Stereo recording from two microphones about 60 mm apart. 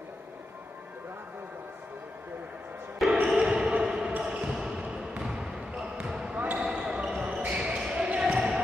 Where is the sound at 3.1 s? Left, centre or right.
Centre.